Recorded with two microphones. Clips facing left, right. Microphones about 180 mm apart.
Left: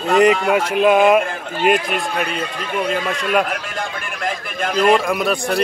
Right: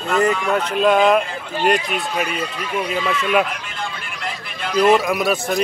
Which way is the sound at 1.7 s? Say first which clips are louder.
Left 1 dB; 50° left (ahead or behind).